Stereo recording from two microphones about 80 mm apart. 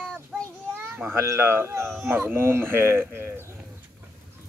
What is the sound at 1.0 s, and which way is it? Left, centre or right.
A man's voice, right.